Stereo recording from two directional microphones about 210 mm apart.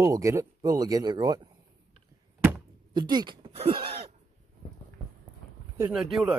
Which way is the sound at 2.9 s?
20° right (ahead or behind).